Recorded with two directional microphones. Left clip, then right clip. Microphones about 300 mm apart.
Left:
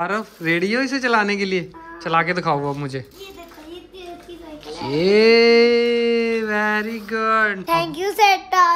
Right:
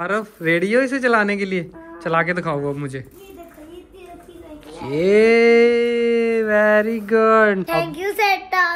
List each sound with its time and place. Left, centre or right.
0.0 s speech: centre
4.6 s livestock: centre
7.6 s a child's voice: left